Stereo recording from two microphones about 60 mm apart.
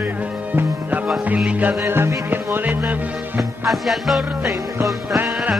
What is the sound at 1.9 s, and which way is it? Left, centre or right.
Music, right.